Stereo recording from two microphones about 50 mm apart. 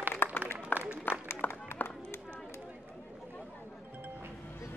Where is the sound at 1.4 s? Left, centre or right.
Left.